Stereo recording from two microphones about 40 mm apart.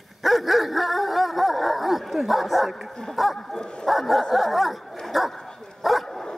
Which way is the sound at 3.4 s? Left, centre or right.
Centre.